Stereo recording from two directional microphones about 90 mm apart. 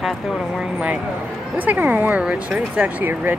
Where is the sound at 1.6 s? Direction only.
20° right (ahead or behind).